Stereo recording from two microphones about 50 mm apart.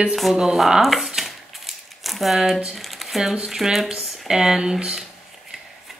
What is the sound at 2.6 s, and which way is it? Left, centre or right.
Speech, centre.